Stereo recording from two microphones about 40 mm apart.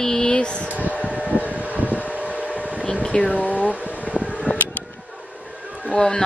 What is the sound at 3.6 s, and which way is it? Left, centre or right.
Vehicle, right.